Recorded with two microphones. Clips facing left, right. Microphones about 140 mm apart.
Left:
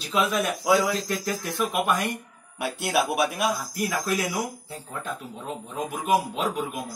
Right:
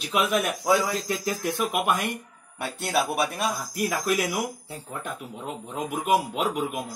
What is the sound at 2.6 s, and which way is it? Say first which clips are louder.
Speech: left 1 dB; 5° left (ahead or behind).